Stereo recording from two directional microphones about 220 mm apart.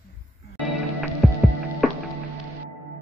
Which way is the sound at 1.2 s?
Centre (ahead or behind).